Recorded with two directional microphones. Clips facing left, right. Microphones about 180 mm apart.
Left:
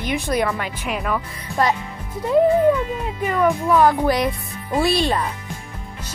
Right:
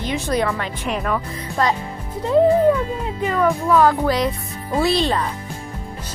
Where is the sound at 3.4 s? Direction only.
15° left (ahead or behind).